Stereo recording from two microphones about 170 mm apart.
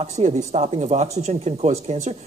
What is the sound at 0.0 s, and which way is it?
Speech, 40° right (ahead or behind).